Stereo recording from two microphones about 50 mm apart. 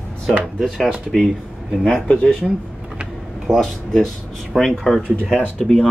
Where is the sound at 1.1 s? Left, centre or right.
Centre.